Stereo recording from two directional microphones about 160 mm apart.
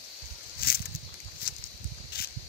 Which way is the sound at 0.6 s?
70° left (ahead or behind).